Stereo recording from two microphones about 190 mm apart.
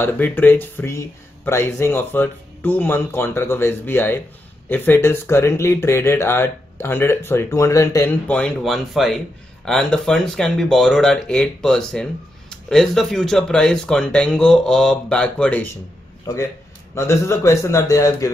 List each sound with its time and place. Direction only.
0.0 s speech: 10° left (ahead or behind)
16.9 s speech: 15° left (ahead or behind)